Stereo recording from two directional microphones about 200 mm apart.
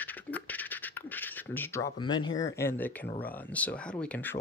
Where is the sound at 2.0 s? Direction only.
20° left (ahead or behind).